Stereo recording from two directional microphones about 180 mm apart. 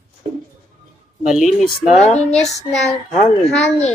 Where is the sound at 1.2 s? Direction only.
Centre (ahead or behind).